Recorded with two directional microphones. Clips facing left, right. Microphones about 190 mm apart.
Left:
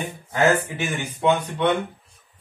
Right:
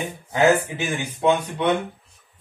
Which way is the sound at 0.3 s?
15° right (ahead or behind).